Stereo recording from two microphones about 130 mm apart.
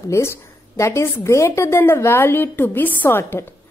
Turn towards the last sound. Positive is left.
turn(degrees=15)  # may be behind; listen again after turning